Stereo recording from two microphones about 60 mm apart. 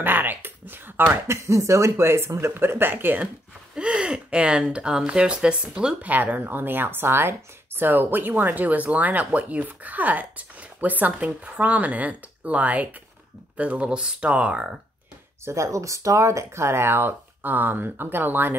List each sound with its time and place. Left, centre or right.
0.0 s a sound: right
1.2 s speech: right
3.7 s a sound: centre
4.7 s speech: centre
6.0 s speech: right
15.4 s speech: right